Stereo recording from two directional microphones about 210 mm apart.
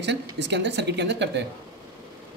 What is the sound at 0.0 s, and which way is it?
Speech, 55° right (ahead or behind).